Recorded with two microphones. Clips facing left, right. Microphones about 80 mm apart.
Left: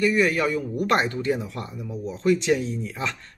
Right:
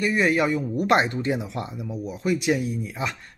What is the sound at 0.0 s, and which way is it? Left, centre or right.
Speech, right.